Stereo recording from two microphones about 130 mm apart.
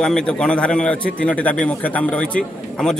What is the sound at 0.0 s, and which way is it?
A man's voice, 5° left (ahead or behind).